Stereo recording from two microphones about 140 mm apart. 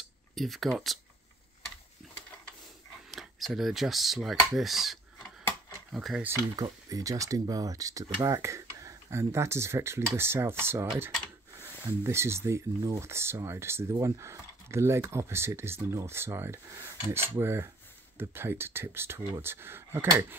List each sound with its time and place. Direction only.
0.3 s speech: centre (ahead or behind)
3.1 s speech: centre (ahead or behind)
6.2 s speech: 20° right (ahead or behind)
12.0 s speech: 20° right (ahead or behind)